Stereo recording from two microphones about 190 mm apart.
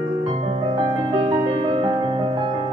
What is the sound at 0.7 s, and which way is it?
Music, 30° right (ahead or behind).